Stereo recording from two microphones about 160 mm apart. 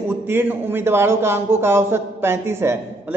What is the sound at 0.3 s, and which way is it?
A man's voice, 15° right (ahead or behind).